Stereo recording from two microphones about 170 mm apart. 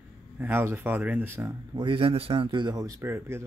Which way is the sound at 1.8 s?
30° right (ahead or behind).